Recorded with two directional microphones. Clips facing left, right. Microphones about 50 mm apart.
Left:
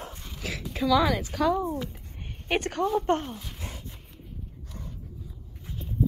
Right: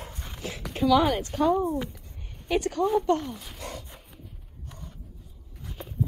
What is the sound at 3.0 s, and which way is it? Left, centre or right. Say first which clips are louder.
Speech: right 1 dB; left.